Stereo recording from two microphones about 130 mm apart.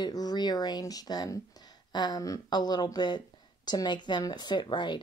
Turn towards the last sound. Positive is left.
turn(degrees=35)  # may be behind; listen again after turning